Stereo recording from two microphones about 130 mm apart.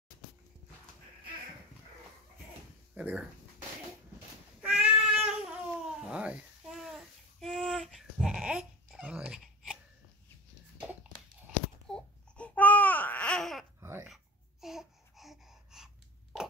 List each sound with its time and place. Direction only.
2.9 s speech: 10° right (ahead or behind)
4.6 s cat: 10° right (ahead or behind)
5.0 s babbling: 5° right (ahead or behind)
11.9 s babbling: 10° left (ahead or behind)
13.7 s babbling: 20° right (ahead or behind)
14.0 s babbling: centre (ahead or behind)